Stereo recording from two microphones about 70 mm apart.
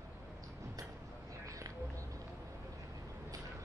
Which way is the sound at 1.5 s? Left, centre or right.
Right.